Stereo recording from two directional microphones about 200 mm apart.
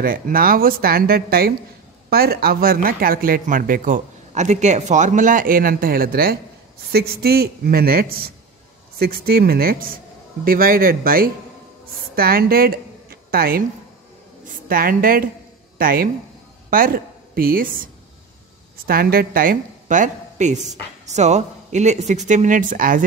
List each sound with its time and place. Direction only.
0.0 s a woman's voice: 45° right (ahead or behind)
14.7 s a woman's voice: 45° right (ahead or behind)
18.9 s a woman's voice: 50° right (ahead or behind)